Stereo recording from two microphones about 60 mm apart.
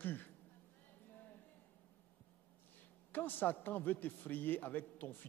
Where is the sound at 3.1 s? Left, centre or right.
Left.